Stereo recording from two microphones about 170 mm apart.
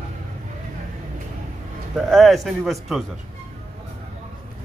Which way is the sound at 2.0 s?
Centre (ahead or behind).